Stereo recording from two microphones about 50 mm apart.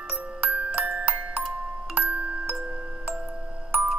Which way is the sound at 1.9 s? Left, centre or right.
Right.